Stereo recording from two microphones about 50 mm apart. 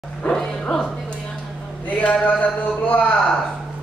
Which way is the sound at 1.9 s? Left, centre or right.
Left.